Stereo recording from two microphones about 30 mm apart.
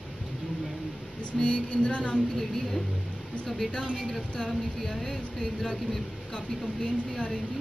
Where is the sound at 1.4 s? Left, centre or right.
Left.